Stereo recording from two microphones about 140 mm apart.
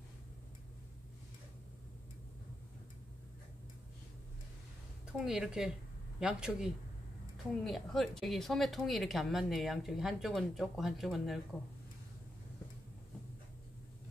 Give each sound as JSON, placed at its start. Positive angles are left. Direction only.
{"t": 5.0, "sound": "a woman's voice", "side_deg": -5}